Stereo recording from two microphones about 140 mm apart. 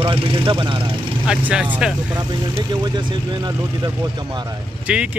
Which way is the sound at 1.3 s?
10° right (ahead or behind).